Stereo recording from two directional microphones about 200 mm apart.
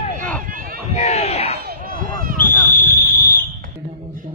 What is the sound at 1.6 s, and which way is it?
Run, 45° right (ahead or behind).